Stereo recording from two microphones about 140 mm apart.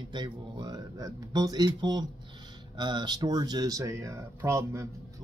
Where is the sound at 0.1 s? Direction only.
30° right (ahead or behind).